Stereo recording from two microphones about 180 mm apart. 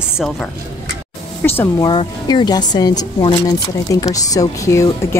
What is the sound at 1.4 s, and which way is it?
Speech, 10° left (ahead or behind).